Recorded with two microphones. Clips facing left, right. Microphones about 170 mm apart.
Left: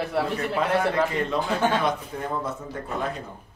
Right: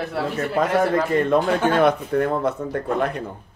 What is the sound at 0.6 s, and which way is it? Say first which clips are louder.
Speech: right 5 dB; 45° right (ahead or behind).